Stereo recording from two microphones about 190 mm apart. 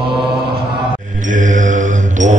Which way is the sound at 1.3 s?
40° right (ahead or behind).